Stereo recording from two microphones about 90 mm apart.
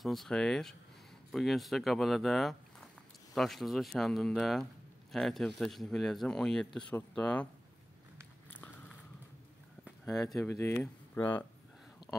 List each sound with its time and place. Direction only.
0.0 s speech: centre (ahead or behind)
10.5 s speech: 30° left (ahead or behind)
12.1 s a sound: 20° left (ahead or behind)